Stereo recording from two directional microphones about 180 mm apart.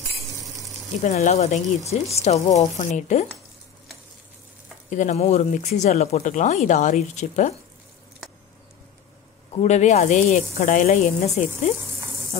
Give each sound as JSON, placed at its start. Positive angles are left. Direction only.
{"t": 1.0, "sound": "speech", "side_deg": 40}
{"t": 4.8, "sound": "speech", "side_deg": 45}
{"t": 9.6, "sound": "speech", "side_deg": 40}